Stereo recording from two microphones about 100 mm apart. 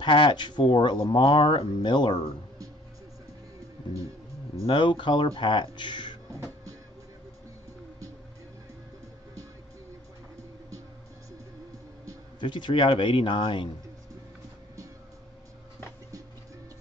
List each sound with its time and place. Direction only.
0.0 s speech: 50° left (ahead or behind)
4.6 s speech: 55° left (ahead or behind)
12.4 s speech: 55° left (ahead or behind)